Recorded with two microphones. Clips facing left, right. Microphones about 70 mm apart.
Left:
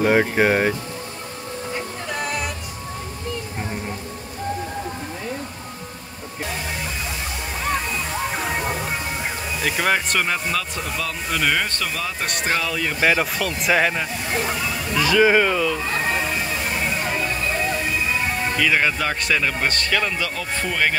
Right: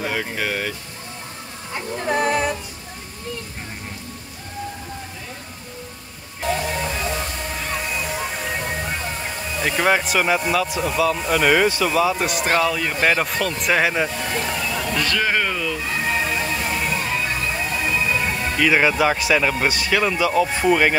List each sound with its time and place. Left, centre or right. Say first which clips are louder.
0.0 s speech: left 8 dB; left
2.0 s music: right 9 dB; right
9.6 s speech: right 3 dB; centre
15.0 s speech: left 7 dB; centre
18.6 s speech: right 4 dB; centre